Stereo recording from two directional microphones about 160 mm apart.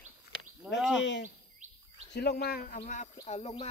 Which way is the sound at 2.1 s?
90° left.